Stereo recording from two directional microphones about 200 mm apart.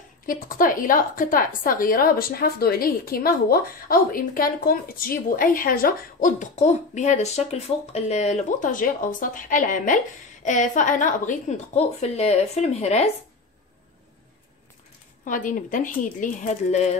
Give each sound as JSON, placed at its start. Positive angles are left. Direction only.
{"t": 0.3, "sound": "a woman's voice", "side_deg": 45}
{"t": 15.2, "sound": "a woman's voice", "side_deg": 40}